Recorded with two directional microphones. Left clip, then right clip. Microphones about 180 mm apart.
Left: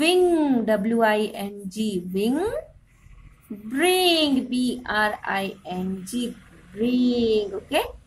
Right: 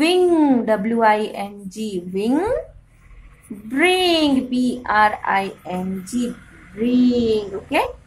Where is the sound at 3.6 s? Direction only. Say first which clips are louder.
Right 3 dB; 20° left (ahead or behind).